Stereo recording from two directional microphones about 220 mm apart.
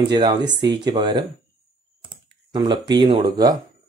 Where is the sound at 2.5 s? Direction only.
20° right (ahead or behind).